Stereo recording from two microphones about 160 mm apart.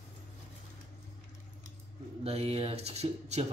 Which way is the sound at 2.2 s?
40° right (ahead or behind).